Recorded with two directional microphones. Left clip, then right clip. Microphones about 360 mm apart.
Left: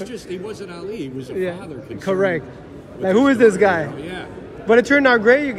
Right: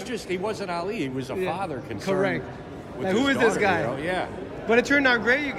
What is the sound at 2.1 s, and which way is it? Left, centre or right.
Speech, centre.